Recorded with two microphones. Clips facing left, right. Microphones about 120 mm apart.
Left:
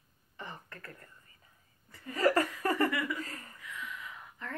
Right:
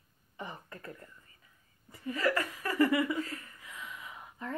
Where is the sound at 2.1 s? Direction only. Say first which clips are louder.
Left 4 dB; 40° left (ahead or behind).